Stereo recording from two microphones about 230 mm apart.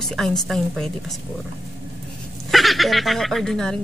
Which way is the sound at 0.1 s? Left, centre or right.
Centre.